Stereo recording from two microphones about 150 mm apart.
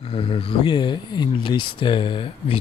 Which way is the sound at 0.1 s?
35° left (ahead or behind).